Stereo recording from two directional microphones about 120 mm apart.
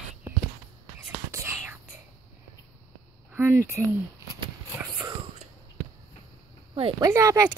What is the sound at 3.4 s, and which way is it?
Speech, 20° right (ahead or behind).